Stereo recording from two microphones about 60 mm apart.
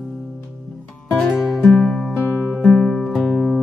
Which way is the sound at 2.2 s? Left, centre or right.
Left.